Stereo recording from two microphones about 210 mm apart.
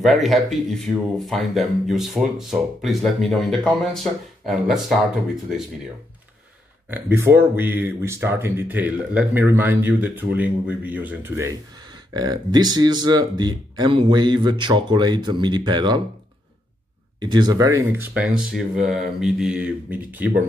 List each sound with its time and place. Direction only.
0.0 s speech: centre (ahead or behind)
6.9 s speech: 10° right (ahead or behind)
17.2 s speech: 20° right (ahead or behind)